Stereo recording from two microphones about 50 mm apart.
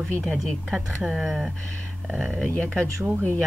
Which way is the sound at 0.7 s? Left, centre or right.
Centre.